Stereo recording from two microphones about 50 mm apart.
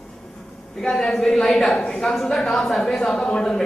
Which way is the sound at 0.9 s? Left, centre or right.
Centre.